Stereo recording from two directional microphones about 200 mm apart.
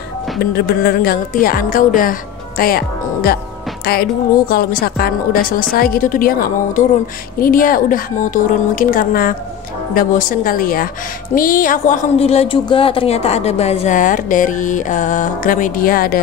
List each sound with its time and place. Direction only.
0.4 s a woman's voice: 50° left (ahead or behind)